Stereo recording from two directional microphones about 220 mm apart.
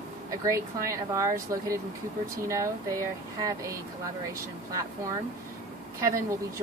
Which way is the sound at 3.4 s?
15° right (ahead or behind).